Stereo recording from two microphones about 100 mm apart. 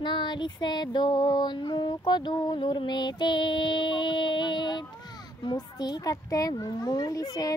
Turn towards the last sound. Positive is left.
turn(degrees=40)  # may be behind; listen again after turning